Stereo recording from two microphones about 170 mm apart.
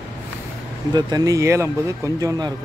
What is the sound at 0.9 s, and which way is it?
Speech, 20° right (ahead or behind).